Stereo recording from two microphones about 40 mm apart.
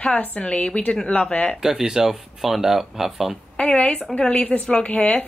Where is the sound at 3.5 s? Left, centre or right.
Left.